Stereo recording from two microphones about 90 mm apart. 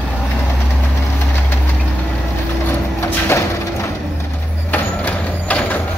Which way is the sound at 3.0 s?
30° left (ahead or behind).